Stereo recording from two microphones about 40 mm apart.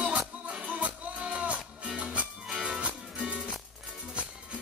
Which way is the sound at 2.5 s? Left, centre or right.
Centre.